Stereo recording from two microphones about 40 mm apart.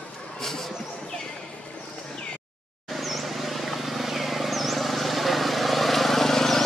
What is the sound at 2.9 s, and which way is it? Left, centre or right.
Vehicle, centre.